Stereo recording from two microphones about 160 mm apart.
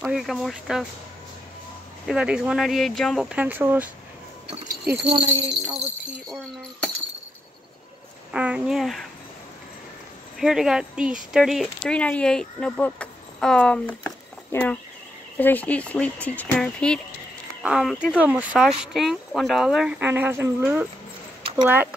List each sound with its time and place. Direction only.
0.0 s speech: centre (ahead or behind)
2.0 s speech: 5° right (ahead or behind)
5.0 s speech: 35° right (ahead or behind)
5.7 s speech: 5° right (ahead or behind)
8.3 s speech: 5° right (ahead or behind)
10.4 s speech: 5° right (ahead or behind)
17.6 s speech: 5° right (ahead or behind)